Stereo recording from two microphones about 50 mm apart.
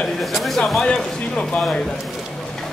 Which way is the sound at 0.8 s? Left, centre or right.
Left.